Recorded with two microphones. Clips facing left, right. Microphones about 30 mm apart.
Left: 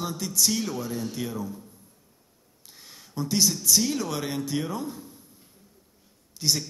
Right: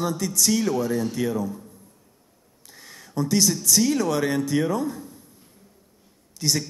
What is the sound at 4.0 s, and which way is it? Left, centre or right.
Speech, centre.